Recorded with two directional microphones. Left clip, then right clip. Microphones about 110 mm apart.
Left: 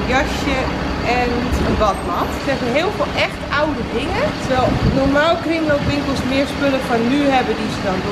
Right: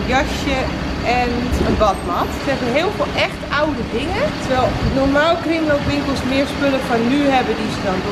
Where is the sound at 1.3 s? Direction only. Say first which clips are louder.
Even; 20° left (ahead or behind).